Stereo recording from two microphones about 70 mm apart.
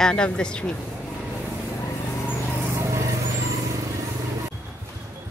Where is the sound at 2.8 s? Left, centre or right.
Right.